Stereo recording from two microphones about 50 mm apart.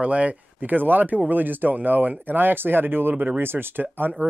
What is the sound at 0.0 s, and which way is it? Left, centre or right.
Speech, right.